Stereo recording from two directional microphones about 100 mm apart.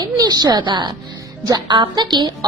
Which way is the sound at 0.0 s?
40° right (ahead or behind).